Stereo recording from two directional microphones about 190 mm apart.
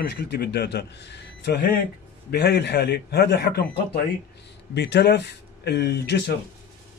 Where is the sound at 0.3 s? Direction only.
55° left (ahead or behind).